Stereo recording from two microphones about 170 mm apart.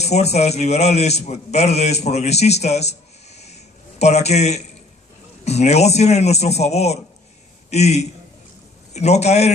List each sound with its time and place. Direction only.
0.0 s a man's voice: 40° left (ahead or behind)